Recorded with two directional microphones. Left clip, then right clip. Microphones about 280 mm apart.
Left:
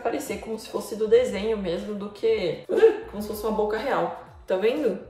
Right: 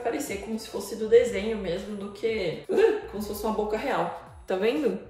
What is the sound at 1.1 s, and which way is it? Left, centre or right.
Speech, centre.